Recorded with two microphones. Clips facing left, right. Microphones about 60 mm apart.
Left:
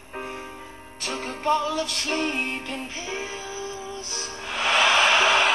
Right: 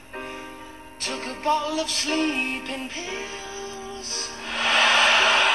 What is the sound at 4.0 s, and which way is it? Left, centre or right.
Music, centre.